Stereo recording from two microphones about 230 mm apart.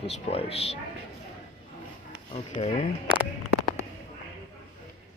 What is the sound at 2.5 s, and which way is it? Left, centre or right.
Speech, left.